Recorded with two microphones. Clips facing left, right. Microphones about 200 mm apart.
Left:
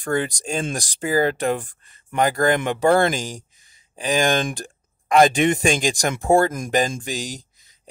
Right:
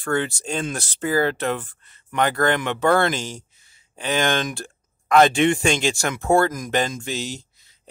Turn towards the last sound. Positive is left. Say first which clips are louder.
# even
turn(degrees=15)  # may be behind; listen again after turning